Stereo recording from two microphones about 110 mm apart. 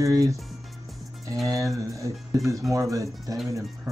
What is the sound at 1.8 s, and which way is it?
Speech, 30° right (ahead or behind).